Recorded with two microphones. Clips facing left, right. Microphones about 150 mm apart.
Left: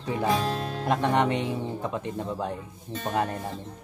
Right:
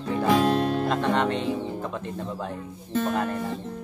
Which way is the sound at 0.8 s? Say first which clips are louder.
Even; 15° left (ahead or behind).